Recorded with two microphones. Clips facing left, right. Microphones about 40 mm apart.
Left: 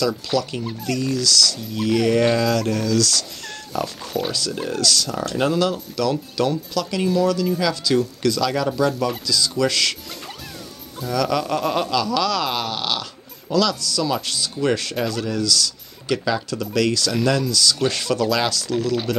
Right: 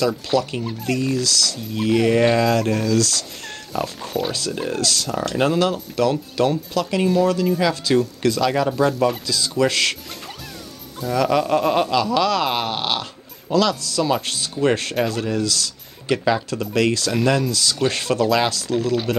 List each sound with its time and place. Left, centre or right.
0.3 s speech: centre
1.6 s speech: centre
3.7 s speech: centre
4.3 s speech: right
5.3 s speech: centre
5.6 s speech: right
7.0 s speech: centre
9.2 s speech: right
11.1 s a man's voice: centre
17.1 s speech: centre
17.8 s speech: right